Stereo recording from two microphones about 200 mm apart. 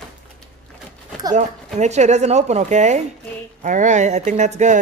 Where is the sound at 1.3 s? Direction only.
35° right (ahead or behind).